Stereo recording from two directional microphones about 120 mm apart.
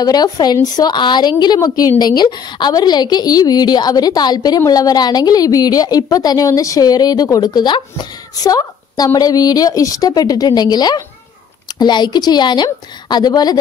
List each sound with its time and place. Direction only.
0.0 s a woman's voice: 35° left (ahead or behind)